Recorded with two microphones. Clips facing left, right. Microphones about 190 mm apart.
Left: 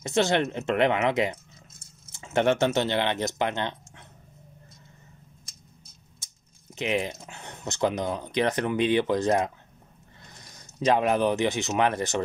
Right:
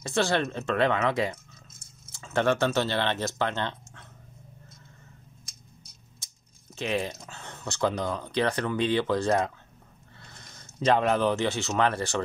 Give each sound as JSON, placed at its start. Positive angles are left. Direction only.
{"t": 0.0, "sound": "speech", "side_deg": 20}
{"t": 6.7, "sound": "speech", "side_deg": 15}